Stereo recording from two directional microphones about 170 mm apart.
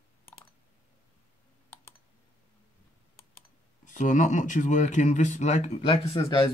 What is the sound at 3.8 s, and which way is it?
Speech, 50° left (ahead or behind).